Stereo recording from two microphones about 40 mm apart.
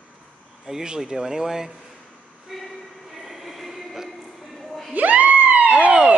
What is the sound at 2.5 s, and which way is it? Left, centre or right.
Train, centre.